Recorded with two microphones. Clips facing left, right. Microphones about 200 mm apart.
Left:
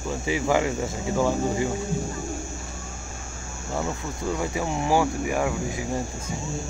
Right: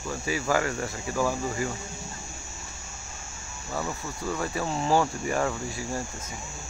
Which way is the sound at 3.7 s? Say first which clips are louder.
Left 3 dB; 20° left (ahead or behind).